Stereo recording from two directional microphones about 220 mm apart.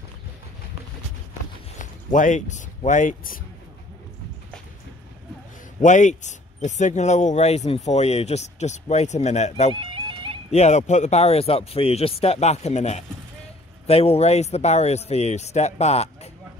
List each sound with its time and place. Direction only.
2.1 s speech: 35° left (ahead or behind)
5.8 s speech: 35° left (ahead or behind)
9.8 s music: 20° right (ahead or behind)
10.5 s a man's voice: 30° left (ahead or behind)